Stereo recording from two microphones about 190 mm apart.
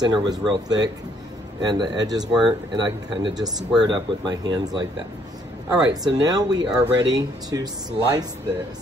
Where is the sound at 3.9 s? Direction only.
20° right (ahead or behind).